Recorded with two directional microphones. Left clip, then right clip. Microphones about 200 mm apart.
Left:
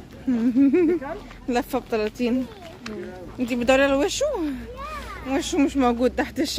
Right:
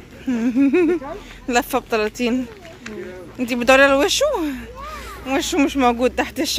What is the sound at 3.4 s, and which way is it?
Speech, 15° right (ahead or behind).